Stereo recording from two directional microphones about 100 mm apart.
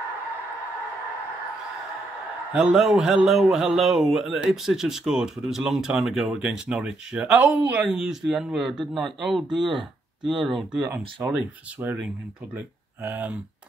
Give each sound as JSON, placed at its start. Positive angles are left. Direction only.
{"t": 2.5, "sound": "speech", "side_deg": -5}